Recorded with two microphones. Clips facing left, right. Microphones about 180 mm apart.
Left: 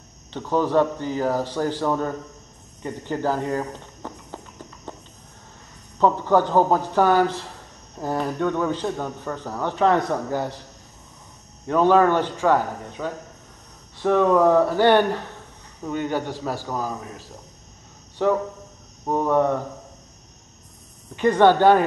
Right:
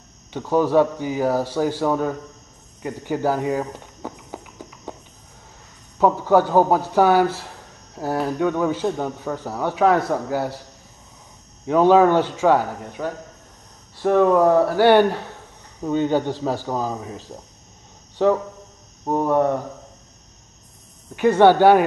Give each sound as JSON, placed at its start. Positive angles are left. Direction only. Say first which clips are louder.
{"t": 0.3, "sound": "speech", "louder": "right 3 dB", "side_deg": -10}
{"t": 2.8, "sound": "walk", "louder": "right 3 dB", "side_deg": -10}
{"t": 5.9, "sound": "speech", "louder": "right 2 dB", "side_deg": -10}
{"t": 11.6, "sound": "a man's voice", "louder": "right 3 dB", "side_deg": -10}
{"t": 19.0, "sound": "speech", "louder": "right 1 dB", "side_deg": -15}
{"t": 21.2, "sound": "speech", "louder": "right 2 dB", "side_deg": -10}